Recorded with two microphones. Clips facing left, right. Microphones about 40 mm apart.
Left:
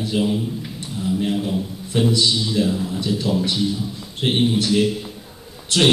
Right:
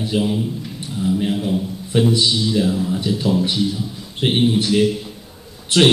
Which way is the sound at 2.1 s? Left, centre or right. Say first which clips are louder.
Left 1 dB; centre.